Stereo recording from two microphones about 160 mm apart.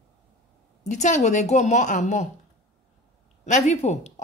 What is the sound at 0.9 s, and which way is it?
Speech, 50° left (ahead or behind).